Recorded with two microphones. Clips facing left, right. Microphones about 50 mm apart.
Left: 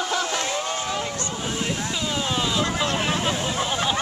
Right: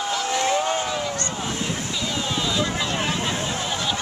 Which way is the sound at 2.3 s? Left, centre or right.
Centre.